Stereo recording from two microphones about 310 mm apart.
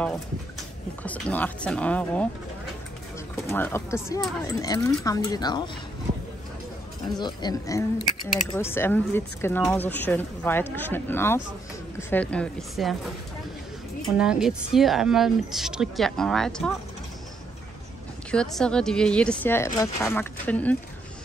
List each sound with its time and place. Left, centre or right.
1.3 s speech: centre
3.4 s speech: centre
7.2 s speech: centre
14.1 s speech: centre
18.3 s speech: centre